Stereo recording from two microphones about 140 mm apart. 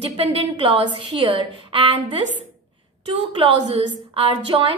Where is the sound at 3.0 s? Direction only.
40° right (ahead or behind).